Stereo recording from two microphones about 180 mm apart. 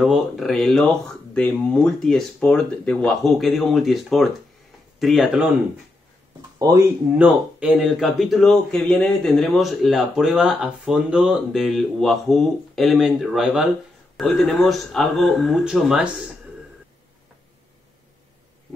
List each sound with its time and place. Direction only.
0.0 s speech: centre (ahead or behind)
6.6 s speech: 20° right (ahead or behind)
7.2 s speech: 5° right (ahead or behind)